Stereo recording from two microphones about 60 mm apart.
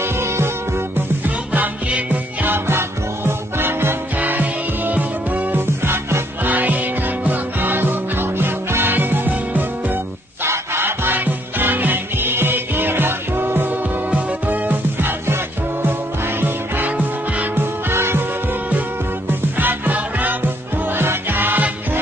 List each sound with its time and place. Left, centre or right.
0.0 s music: right
0.9 s music: right
2.4 s music: right
4.2 s music: right
5.9 s music: right
6.4 s music: right
10.4 s music: right
17.6 s music: right
19.2 s music: right
20.9 s music: right